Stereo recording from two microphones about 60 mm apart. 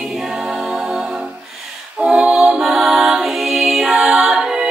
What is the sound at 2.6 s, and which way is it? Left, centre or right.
Music, centre.